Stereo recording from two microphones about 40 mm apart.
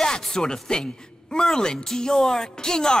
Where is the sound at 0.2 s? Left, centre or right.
Centre.